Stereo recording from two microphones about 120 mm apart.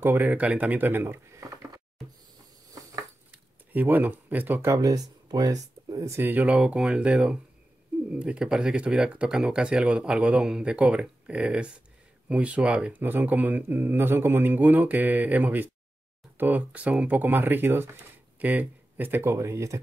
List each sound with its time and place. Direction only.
0.0 s speech: 20° right (ahead or behind)
3.3 s speech: 15° right (ahead or behind)